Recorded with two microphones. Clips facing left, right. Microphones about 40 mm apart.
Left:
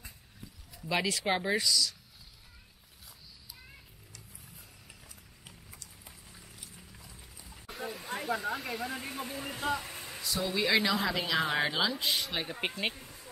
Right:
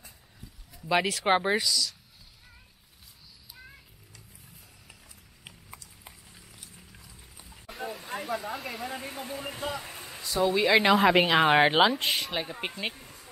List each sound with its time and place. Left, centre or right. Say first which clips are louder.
1.2 s speech: right 6 dB; right
1.6 s speech: right 1 dB; centre
6.7 s a sound: even; centre
7.4 s snake: right 3 dB; centre
9.0 s a sound: right 2 dB; centre
10.4 s speech: right 8 dB; centre
10.7 s speech: right 9 dB; right
12.1 s speech: right 3 dB; centre
13.0 s a sound: right 1 dB; centre